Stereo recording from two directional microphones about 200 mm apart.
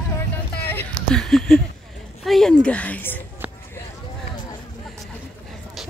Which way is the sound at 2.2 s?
Centre (ahead or behind).